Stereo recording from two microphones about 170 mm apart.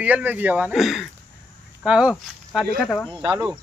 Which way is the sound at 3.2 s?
25° right (ahead or behind).